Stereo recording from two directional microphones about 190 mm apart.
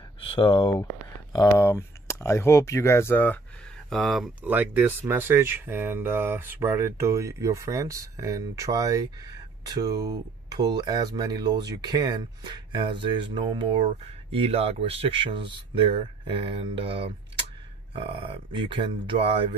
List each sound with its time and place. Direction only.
0.2 s speech: 25° left (ahead or behind)
1.3 s speech: 15° left (ahead or behind)
3.9 s speech: centre (ahead or behind); by 19.4 s 30° right (ahead or behind)